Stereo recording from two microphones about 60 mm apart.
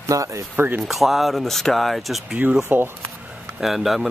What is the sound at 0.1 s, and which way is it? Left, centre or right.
Speech, right.